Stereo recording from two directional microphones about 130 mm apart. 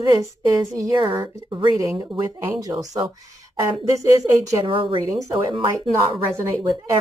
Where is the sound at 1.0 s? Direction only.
45° right (ahead or behind).